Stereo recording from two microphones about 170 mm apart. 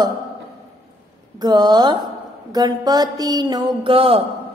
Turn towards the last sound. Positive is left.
turn(degrees=-35)  # may be behind; listen again after turning